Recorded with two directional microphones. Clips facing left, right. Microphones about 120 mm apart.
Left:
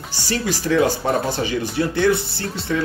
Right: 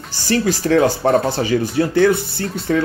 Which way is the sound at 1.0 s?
60° right (ahead or behind).